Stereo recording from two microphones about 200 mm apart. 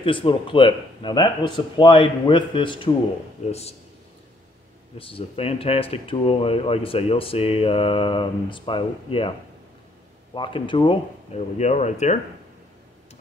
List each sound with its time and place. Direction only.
0.0 s speech: 25° left (ahead or behind)
4.9 s speech: 25° left (ahead or behind)
10.3 s speech: 25° left (ahead or behind)